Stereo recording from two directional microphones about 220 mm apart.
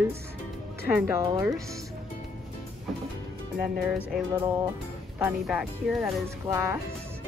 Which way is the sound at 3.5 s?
5° right (ahead or behind).